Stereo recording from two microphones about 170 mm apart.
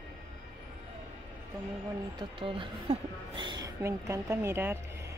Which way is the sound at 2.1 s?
30° right (ahead or behind).